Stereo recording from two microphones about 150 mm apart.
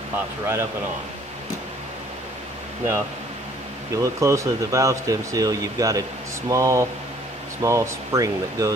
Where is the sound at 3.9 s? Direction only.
20° right (ahead or behind).